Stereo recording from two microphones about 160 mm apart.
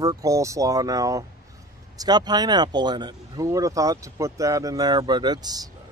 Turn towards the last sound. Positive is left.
turn(degrees=-25)  # may be behind; listen again after turning